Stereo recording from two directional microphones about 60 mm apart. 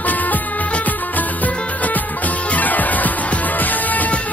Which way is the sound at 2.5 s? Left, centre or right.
Left.